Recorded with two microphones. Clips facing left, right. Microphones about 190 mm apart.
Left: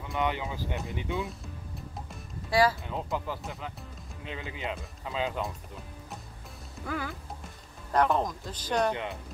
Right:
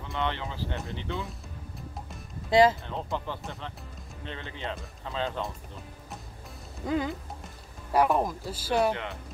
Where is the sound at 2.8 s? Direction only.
5° left (ahead or behind).